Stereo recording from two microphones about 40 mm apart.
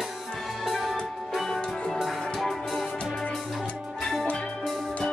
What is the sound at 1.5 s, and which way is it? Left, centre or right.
Music, centre.